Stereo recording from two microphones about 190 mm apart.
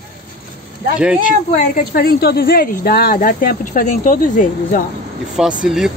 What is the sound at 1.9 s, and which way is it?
Speech, 55° left (ahead or behind).